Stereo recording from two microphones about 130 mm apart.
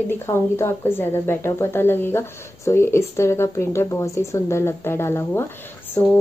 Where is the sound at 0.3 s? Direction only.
20° left (ahead or behind).